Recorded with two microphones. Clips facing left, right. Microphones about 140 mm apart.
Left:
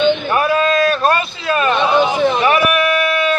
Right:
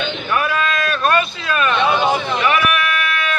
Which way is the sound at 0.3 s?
35° left (ahead or behind).